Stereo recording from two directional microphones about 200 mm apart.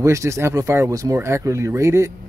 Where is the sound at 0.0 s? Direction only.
15° right (ahead or behind).